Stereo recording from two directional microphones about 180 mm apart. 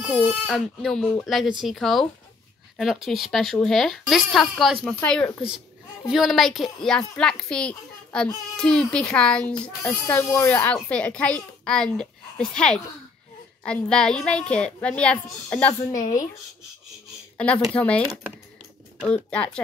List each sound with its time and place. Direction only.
0.5 s a child's voice: centre (ahead or behind)
15.9 s a woman's voice: 45° left (ahead or behind)
17.7 s speech: 5° left (ahead or behind)
19.0 s speech: 5° left (ahead or behind)